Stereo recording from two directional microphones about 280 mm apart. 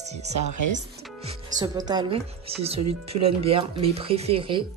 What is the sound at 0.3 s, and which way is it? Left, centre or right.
Speech, right.